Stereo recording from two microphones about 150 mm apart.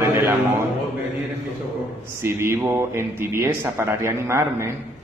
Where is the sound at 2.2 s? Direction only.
15° right (ahead or behind).